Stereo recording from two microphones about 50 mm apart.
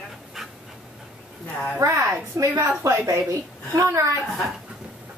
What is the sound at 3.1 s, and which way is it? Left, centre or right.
Speech, right.